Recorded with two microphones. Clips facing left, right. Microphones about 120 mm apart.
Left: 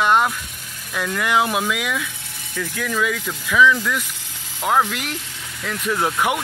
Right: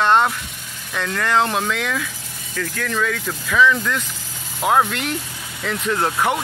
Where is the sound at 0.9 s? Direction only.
10° left (ahead or behind).